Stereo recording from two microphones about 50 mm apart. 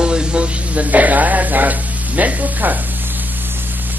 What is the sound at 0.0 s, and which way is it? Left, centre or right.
Speech, centre.